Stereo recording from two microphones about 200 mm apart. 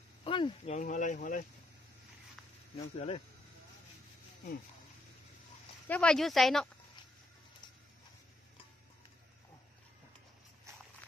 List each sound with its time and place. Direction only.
0.2 s a sound: 25° left (ahead or behind)
0.7 s speech: 40° left (ahead or behind)
2.8 s speech: 30° left (ahead or behind)
5.9 s speech: 5° left (ahead or behind)
10.7 s walk: 15° right (ahead or behind)